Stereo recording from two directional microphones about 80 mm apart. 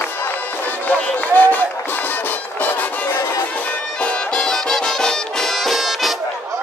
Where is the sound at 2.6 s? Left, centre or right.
Left.